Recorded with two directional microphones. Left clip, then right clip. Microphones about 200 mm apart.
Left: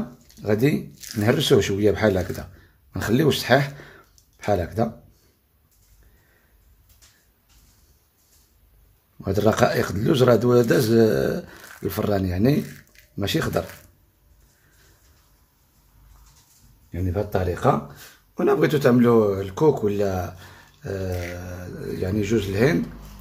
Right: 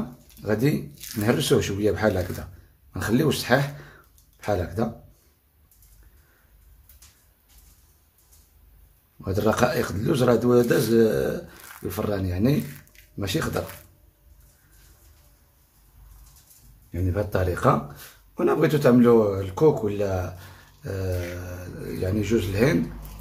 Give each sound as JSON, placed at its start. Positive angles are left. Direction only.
{"t": 0.4, "sound": "speech", "side_deg": 30}
{"t": 0.9, "sound": "squish", "side_deg": 0}
{"t": 1.2, "sound": "speech", "side_deg": 30}
{"t": 9.2, "sound": "speech", "side_deg": 35}
{"t": 16.9, "sound": "speech", "side_deg": 20}